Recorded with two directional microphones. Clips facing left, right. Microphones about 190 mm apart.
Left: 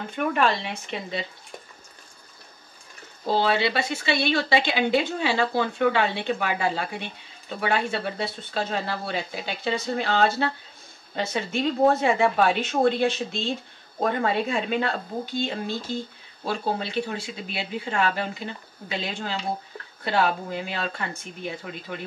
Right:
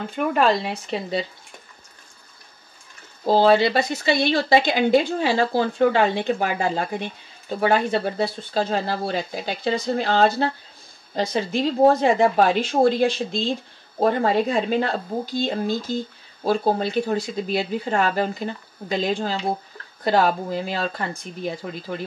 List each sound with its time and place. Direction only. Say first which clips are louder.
0.3 s speech: right 5 dB; 40° right (ahead or behind)
3.3 s speech: right 7 dB; 40° right (ahead or behind)
11.3 s speech: right 3 dB; 35° right (ahead or behind)